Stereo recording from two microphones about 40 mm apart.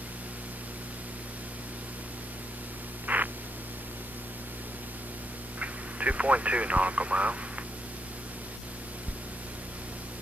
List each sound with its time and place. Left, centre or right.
3.1 s white noise: right
5.6 s speech: right